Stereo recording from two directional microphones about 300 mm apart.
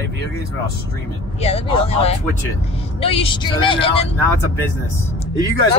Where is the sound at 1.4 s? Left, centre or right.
Centre.